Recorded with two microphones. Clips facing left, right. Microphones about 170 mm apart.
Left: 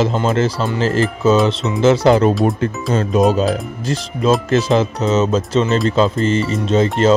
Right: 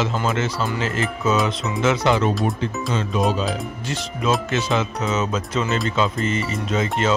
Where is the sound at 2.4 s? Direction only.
50° left (ahead or behind); by 7.1 s 30° left (ahead or behind).